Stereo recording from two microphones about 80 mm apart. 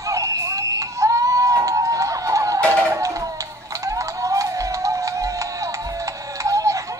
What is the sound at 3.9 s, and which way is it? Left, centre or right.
Music, right.